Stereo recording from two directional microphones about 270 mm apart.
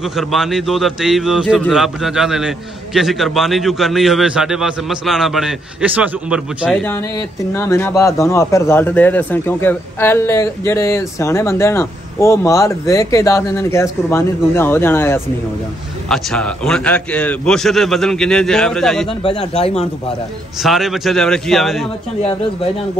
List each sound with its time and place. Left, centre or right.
0.0 s a man's voice: centre
19.2 s speech: centre
20.6 s a man's voice: centre